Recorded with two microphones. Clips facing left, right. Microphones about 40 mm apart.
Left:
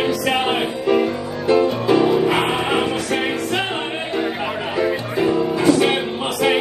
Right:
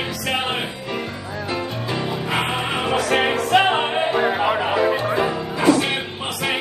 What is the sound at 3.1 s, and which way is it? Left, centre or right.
Music, right.